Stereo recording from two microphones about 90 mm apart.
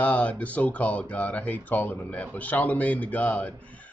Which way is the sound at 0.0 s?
15° left (ahead or behind).